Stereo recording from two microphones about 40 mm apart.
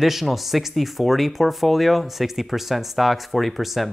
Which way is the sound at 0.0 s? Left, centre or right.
Centre.